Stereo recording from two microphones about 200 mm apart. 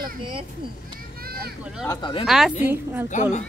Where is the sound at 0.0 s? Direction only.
25° right (ahead or behind).